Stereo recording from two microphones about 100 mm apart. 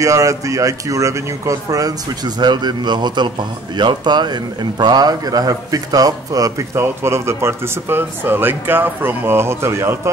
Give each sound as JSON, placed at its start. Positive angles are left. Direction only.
{"t": 0.0, "sound": "speech", "side_deg": -35}
{"t": 6.8, "sound": "speech", "side_deg": -25}